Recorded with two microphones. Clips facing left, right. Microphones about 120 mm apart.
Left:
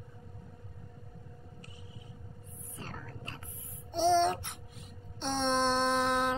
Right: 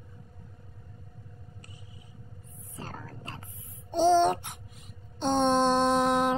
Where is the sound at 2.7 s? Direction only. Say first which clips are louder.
Right 4 dB; 40° right (ahead or behind).